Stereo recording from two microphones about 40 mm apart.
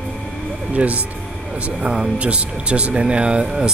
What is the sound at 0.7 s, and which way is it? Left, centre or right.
Speech, right.